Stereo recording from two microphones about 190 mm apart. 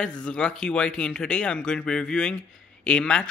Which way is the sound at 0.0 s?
5° left (ahead or behind).